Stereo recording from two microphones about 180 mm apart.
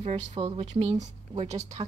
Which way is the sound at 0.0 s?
35° right (ahead or behind).